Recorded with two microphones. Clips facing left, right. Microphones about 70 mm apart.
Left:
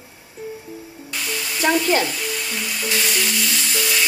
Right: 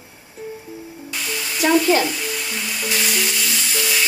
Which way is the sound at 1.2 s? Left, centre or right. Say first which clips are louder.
Right 1 dB; centre.